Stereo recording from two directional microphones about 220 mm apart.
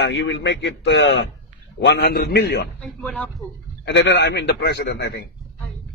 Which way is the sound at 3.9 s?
55° left (ahead or behind).